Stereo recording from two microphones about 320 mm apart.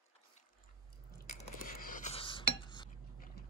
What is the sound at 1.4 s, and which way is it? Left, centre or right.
Cutlery, left.